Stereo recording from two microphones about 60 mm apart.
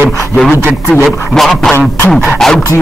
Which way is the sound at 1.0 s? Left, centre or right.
Centre.